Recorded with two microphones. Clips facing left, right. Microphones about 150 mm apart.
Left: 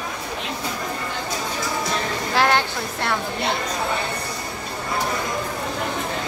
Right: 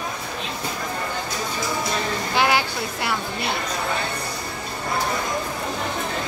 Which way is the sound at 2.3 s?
Centre (ahead or behind).